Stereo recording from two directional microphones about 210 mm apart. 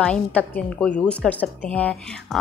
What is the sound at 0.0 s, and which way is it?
A woman's voice, 5° left (ahead or behind).